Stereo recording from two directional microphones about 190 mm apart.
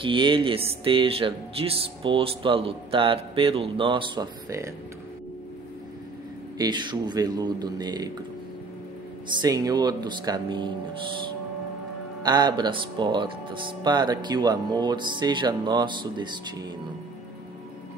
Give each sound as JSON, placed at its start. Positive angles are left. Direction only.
{"t": 0.0, "sound": "speech", "side_deg": -25}
{"t": 6.6, "sound": "speech", "side_deg": -25}
{"t": 9.3, "sound": "speech", "side_deg": -20}
{"t": 12.2, "sound": "speech", "side_deg": -20}